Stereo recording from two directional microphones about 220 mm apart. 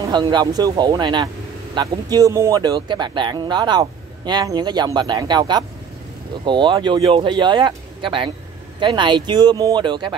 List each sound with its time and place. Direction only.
0.1 s speech: 20° right (ahead or behind)